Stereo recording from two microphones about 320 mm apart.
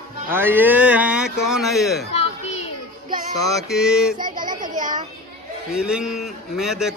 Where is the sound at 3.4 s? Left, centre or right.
Centre.